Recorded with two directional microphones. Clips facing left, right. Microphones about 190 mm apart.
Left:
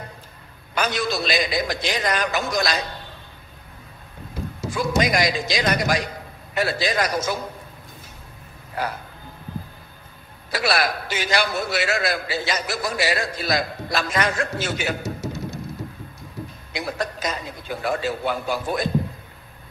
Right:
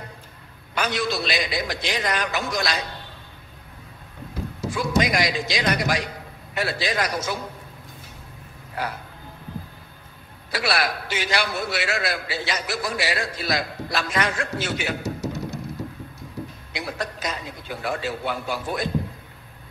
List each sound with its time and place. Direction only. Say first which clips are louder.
0.7 s a man's voice: left 1 dB; 45° left (ahead or behind)
4.6 s a man's voice: left 1 dB; 45° left (ahead or behind)
10.5 s a man's voice: left 2 dB; 45° left (ahead or behind)
16.7 s a man's voice: left 3 dB; 45° left (ahead or behind)